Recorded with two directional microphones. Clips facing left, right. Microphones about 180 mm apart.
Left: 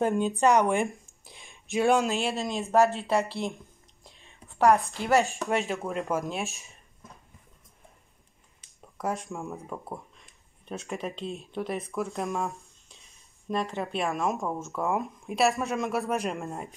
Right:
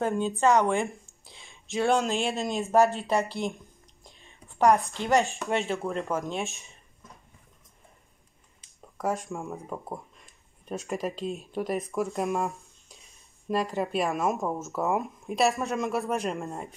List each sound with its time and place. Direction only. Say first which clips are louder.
0.0 s speech: left 1 dB; 15° left (ahead or behind)
2.0 s speech: even; centre (ahead or behind)
4.0 s a sound: even; centre (ahead or behind)
5.0 s speech: left 1 dB; centre (ahead or behind)
9.0 s speech: right 2 dB; centre (ahead or behind)